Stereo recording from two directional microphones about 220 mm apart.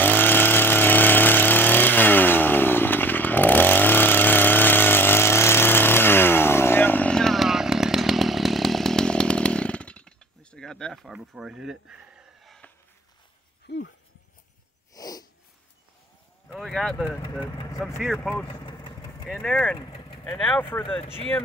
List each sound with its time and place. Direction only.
0.0 s vehicle: 10° left (ahead or behind)
13.7 s a sound: 50° left (ahead or behind)
15.0 s snort: 15° left (ahead or behind)
16.4 s a sound: centre (ahead or behind)
17.7 s speech: centre (ahead or behind)
18.5 s vehicle: 20° left (ahead or behind)
19.2 s speech: centre (ahead or behind)
20.8 s speech: 25° left (ahead or behind)